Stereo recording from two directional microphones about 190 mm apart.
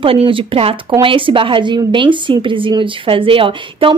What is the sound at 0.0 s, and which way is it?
A woman's voice, 30° right (ahead or behind).